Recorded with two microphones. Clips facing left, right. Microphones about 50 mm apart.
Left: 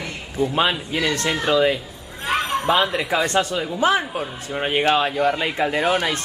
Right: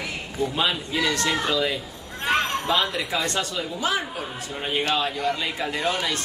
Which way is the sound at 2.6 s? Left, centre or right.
Left.